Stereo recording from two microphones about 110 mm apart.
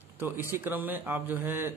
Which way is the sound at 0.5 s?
20° right (ahead or behind).